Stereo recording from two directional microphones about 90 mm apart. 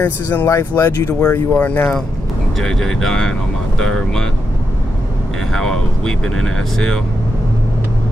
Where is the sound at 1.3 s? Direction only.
20° left (ahead or behind).